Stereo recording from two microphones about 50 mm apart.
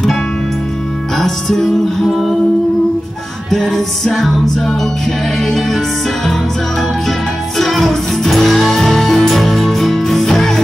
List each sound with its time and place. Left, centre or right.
1.1 s music: centre
2.0 s music: centre
3.4 s music: centre
7.1 s music: centre